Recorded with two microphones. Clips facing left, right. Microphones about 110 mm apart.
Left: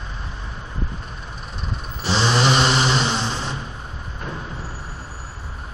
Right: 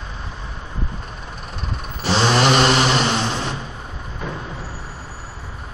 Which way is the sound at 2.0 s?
55° right (ahead or behind).